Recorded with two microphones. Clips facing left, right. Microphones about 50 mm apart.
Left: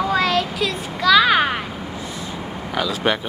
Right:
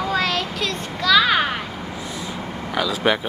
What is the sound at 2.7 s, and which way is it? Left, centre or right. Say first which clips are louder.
Speech: right 1 dB; centre.